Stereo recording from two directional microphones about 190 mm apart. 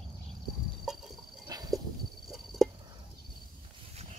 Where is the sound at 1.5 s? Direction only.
20° right (ahead or behind).